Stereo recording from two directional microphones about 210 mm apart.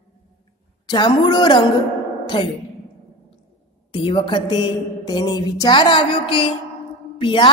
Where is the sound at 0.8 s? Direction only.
20° left (ahead or behind).